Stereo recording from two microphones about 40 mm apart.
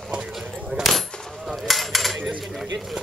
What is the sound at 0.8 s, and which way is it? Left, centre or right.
Coin, centre.